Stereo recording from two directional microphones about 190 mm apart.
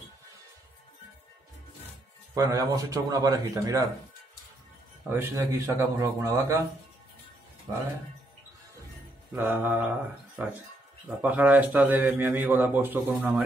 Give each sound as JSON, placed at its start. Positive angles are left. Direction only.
{"t": 2.3, "sound": "speech", "side_deg": -15}
{"t": 5.1, "sound": "a man's voice", "side_deg": -15}
{"t": 9.3, "sound": "a man's voice", "side_deg": -10}